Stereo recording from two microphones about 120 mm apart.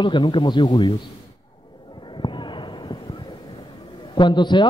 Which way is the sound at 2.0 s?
40° left (ahead or behind).